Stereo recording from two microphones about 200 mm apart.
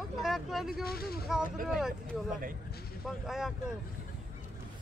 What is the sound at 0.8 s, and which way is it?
Speech, 50° left (ahead or behind).